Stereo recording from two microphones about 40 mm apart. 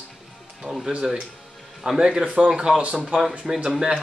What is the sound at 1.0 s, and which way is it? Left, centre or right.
Speech, centre.